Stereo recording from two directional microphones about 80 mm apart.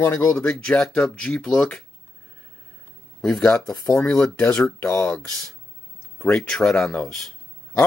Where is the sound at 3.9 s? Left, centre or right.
Left.